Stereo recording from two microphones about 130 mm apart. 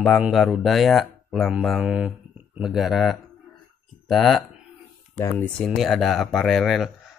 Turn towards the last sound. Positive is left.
turn(degrees=0)  # may be behind; listen again after turning